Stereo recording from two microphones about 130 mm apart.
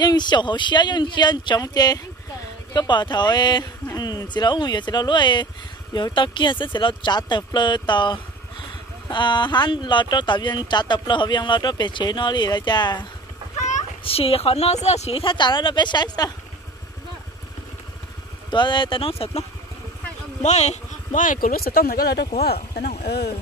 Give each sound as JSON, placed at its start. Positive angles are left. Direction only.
{"t": 0.0, "sound": "speech", "side_deg": 35}
{"t": 13.6, "sound": "a sound", "side_deg": 65}
{"t": 14.0, "sound": "speech", "side_deg": 45}
{"t": 18.5, "sound": "speech", "side_deg": 35}
{"t": 20.4, "sound": "speech", "side_deg": 60}